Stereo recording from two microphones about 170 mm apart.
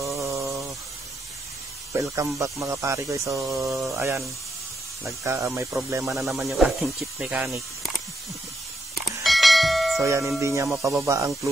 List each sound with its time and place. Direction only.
0.0 s a sound: 20° right (ahead or behind)
2.0 s speech: 20° right (ahead or behind)
3.6 s speech: centre (ahead or behind)
3.9 s speech: 15° right (ahead or behind)
6.0 s speech: centre (ahead or behind)
9.2 s church bell: centre (ahead or behind)
10.0 s speech: 15° right (ahead or behind)